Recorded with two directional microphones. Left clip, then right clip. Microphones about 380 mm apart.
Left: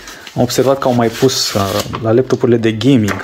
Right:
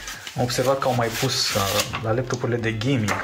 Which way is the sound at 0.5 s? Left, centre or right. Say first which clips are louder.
Left 8 dB; centre.